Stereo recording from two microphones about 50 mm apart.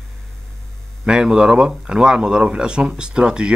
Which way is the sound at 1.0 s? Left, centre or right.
Centre.